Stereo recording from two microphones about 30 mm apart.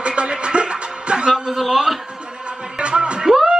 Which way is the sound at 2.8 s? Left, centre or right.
Right.